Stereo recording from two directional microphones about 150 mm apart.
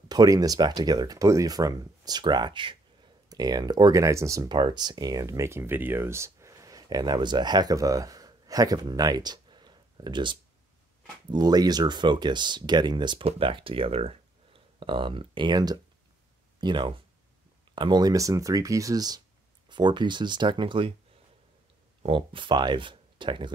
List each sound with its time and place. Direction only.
0.1 s speech: 25° right (ahead or behind)
22.0 s speech: 35° right (ahead or behind)